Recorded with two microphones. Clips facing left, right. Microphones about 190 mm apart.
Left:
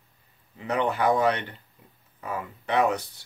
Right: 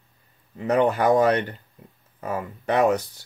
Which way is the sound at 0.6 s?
45° right (ahead or behind).